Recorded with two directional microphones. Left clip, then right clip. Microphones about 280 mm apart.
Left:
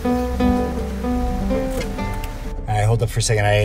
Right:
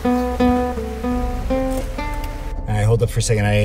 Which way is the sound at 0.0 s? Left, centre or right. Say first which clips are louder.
Right 2 dB; centre.